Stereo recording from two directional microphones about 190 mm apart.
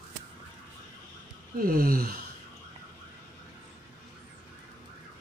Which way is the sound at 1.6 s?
50° right (ahead or behind).